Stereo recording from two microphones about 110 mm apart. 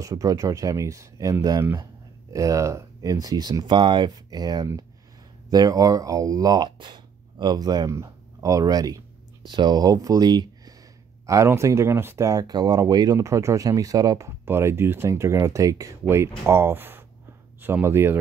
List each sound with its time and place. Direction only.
0.0 s speech: 30° right (ahead or behind)
11.2 s speech: 25° right (ahead or behind)